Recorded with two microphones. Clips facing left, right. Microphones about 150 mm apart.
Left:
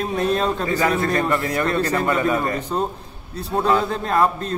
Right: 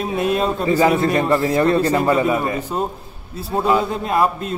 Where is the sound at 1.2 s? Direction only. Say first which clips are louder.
Right 5 dB; 30° right (ahead or behind).